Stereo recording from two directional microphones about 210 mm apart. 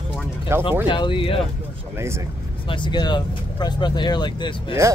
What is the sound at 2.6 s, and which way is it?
Speech, 25° left (ahead or behind).